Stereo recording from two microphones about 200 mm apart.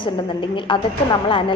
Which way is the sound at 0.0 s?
25° left (ahead or behind).